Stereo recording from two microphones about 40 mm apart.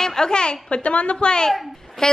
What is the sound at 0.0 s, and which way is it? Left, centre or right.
A woman's voice, centre.